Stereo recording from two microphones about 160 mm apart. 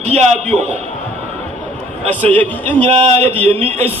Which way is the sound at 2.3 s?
10° left (ahead or behind).